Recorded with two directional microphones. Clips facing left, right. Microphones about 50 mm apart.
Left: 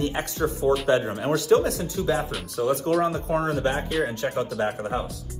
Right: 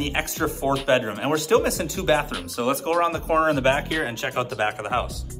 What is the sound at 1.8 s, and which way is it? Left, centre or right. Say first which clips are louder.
Speech: right 3 dB; right.